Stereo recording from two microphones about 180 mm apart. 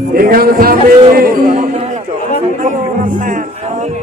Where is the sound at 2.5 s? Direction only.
45° right (ahead or behind).